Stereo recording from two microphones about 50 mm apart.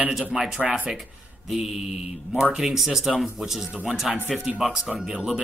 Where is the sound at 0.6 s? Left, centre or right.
Right.